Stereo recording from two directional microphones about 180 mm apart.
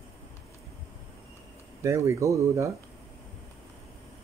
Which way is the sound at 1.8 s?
15° right (ahead or behind).